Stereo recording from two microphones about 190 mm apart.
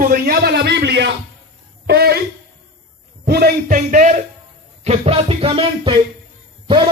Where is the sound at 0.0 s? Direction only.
50° right (ahead or behind).